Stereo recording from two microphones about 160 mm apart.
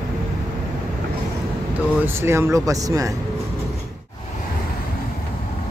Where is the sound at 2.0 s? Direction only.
15° right (ahead or behind).